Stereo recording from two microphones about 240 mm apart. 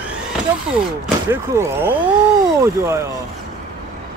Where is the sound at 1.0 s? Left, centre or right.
Centre.